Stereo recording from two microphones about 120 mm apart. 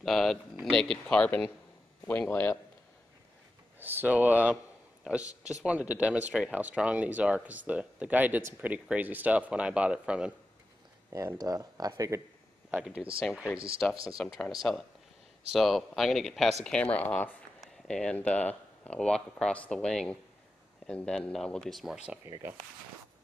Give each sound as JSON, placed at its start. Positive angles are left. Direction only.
{"t": 0.0, "sound": "speech", "side_deg": 0}
{"t": 3.8, "sound": "speech", "side_deg": -15}
{"t": 11.1, "sound": "speech", "side_deg": -30}
{"t": 12.8, "sound": "speech", "side_deg": -10}
{"t": 13.8, "sound": "speech", "side_deg": 10}